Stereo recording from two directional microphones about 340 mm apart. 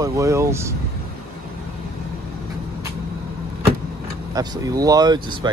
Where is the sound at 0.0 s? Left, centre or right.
Centre.